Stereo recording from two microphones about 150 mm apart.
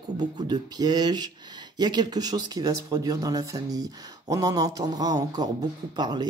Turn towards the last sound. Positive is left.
turn(degrees=-25)  # may be behind; listen again after turning